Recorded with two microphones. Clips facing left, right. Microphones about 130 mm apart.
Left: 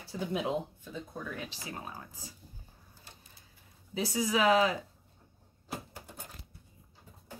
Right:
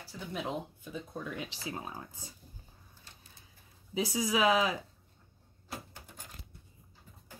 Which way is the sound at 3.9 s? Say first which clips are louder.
Even; 10° right (ahead or behind).